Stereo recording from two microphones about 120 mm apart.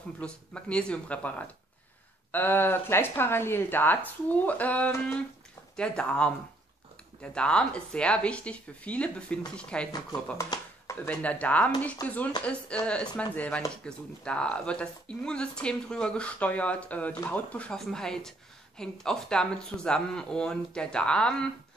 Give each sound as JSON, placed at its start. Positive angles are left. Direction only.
{"t": 0.2, "sound": "speech", "side_deg": 10}
{"t": 2.3, "sound": "speech", "side_deg": 15}
{"t": 10.5, "sound": "speech", "side_deg": 35}
{"t": 11.1, "sound": "speech", "side_deg": 10}